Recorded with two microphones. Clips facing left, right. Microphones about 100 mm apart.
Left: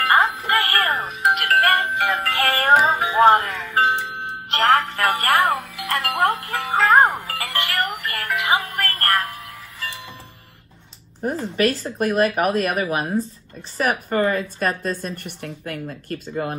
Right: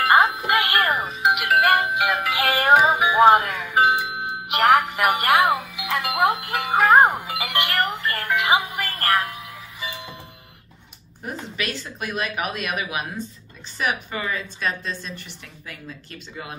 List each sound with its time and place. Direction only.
0.0 s music: 20° right (ahead or behind)
0.8 s music: centre (ahead or behind)
5.6 s speech: centre (ahead or behind)
6.4 s music: 15° right (ahead or behind)
11.4 s speech: 40° left (ahead or behind)